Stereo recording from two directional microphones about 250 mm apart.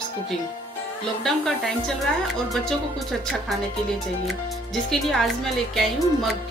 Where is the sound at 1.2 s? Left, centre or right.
Centre.